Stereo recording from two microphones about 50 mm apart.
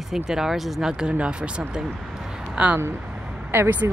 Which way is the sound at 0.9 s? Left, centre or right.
Centre.